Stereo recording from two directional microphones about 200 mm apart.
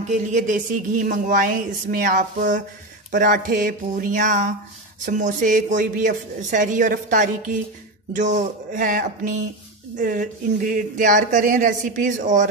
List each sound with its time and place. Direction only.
0.0 s speech: 35° right (ahead or behind)